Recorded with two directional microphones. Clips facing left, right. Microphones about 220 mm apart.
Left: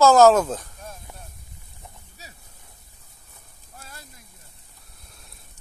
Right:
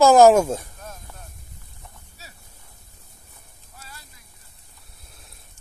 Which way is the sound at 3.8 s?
50° left (ahead or behind).